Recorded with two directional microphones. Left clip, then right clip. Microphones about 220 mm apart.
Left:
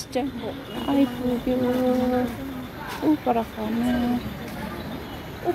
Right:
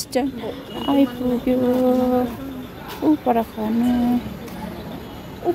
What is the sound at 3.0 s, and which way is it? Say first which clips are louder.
Speech: right 4 dB; 25° right (ahead or behind).